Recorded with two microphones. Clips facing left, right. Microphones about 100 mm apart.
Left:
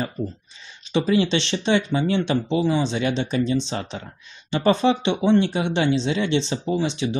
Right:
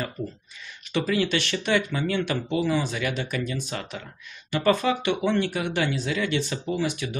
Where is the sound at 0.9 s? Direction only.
25° left (ahead or behind).